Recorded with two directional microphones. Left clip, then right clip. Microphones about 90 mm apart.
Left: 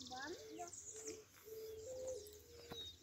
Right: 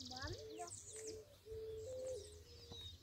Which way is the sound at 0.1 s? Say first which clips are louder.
Left 2 dB; 35° right (ahead or behind).